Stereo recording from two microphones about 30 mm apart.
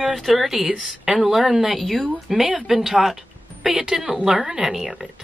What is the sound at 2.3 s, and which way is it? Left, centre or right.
Speech, centre.